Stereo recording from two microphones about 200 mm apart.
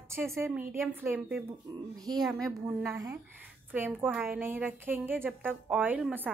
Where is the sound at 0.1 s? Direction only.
10° right (ahead or behind).